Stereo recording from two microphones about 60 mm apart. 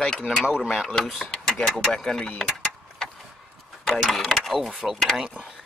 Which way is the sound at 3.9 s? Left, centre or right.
Centre.